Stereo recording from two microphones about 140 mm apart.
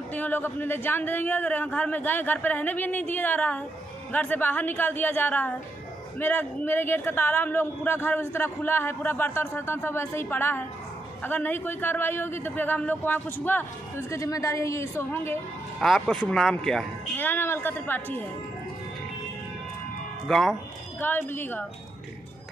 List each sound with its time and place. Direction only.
0.1 s a man's voice: 15° left (ahead or behind)
15.8 s a man's voice: centre (ahead or behind)
20.2 s speech: centre (ahead or behind)
21.0 s a man's voice: 15° left (ahead or behind)